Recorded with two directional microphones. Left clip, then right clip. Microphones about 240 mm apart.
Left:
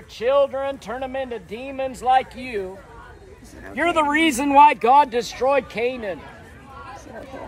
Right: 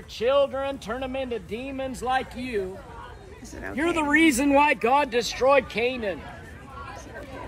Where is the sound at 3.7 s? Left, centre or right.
Left.